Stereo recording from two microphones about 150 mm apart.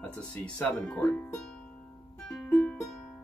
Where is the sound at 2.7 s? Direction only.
5° left (ahead or behind).